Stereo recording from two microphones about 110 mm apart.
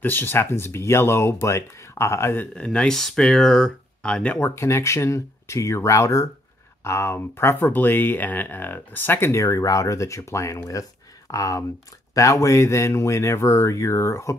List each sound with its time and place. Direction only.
0.0 s speech: 15° left (ahead or behind)
4.4 s speech: 25° left (ahead or behind)